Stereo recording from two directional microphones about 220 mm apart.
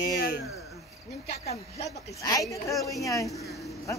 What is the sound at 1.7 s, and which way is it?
A man's voice, 15° left (ahead or behind).